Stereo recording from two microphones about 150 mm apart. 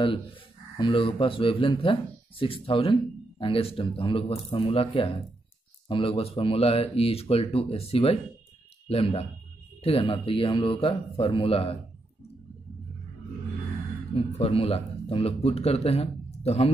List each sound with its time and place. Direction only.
0.0 s speech: 35° left (ahead or behind)
14.1 s speech: 40° left (ahead or behind)